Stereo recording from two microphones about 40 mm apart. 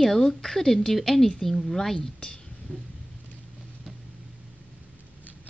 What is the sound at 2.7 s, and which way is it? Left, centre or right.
Thunder, left.